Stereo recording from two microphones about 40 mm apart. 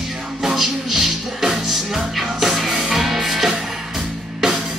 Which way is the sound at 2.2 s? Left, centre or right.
Centre.